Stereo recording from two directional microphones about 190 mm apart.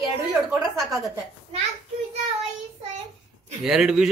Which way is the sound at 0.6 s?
15° right (ahead or behind).